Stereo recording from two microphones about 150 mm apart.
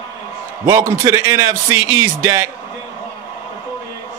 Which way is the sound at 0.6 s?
20° right (ahead or behind).